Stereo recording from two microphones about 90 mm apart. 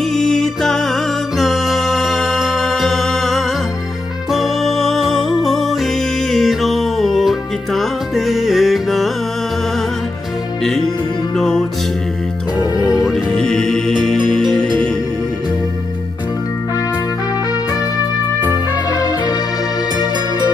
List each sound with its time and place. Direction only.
0.1 s music: 5° left (ahead or behind)
10.6 s music: 5° left (ahead or behind)
12.8 s music: centre (ahead or behind)
18.9 s music: 50° left (ahead or behind)